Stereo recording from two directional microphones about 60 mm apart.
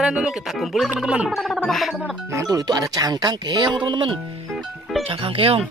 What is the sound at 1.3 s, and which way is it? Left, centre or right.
Speech, centre.